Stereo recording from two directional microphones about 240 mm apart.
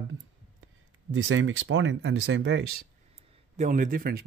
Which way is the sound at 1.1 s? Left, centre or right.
Right.